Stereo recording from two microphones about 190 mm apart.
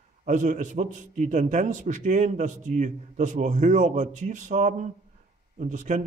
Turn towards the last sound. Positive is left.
turn(degrees=-40)  # may be behind; listen again after turning